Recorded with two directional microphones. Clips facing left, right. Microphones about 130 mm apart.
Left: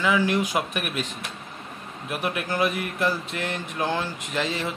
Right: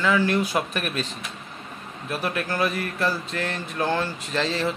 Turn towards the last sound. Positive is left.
turn(degrees=10)  # may be behind; listen again after turning